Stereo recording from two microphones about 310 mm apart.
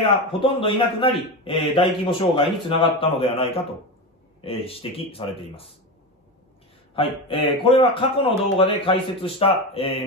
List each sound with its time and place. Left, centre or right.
0.0 s a man's voice: centre
7.0 s a man's voice: centre